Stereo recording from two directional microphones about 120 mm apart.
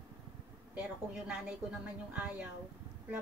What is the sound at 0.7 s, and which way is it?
Speech, 10° right (ahead or behind).